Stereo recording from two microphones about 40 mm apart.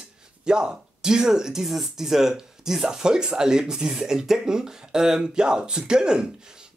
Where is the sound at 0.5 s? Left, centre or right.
Right.